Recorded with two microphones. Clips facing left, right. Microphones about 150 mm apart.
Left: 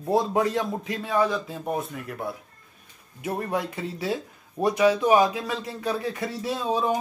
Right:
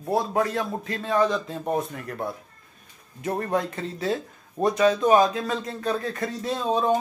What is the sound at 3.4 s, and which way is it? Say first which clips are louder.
Speech: right 2 dB; 10° left (ahead or behind).